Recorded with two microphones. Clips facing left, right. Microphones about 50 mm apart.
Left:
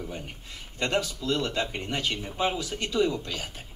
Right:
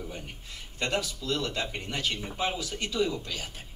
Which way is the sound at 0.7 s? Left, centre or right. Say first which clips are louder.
Left 3 dB; centre.